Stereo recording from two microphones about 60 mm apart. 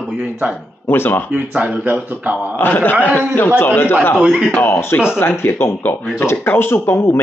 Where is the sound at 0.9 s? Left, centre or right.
Left.